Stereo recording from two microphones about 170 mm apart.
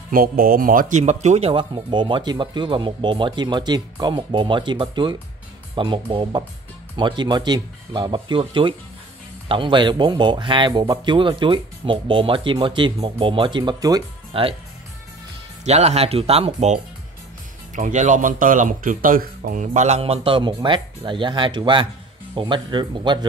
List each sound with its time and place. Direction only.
0.1 s a man's voice: 55° right (ahead or behind); by 14.0 s 20° right (ahead or behind)
14.3 s speech: 30° right (ahead or behind)
15.6 s a man's voice: 40° right (ahead or behind)